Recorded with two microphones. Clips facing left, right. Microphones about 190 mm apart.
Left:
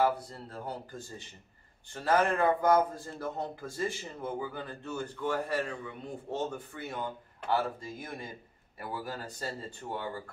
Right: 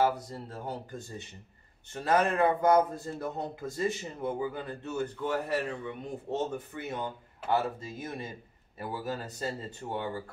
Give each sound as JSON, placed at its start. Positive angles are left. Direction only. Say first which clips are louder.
{"t": 0.0, "sound": "speech", "louder": "right 1 dB", "side_deg": -20}